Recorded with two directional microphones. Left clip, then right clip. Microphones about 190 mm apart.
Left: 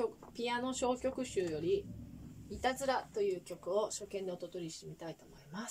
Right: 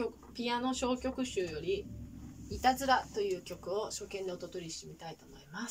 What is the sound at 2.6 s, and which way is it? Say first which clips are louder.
A woman's voice: right 6 dB; 25° left (ahead or behind).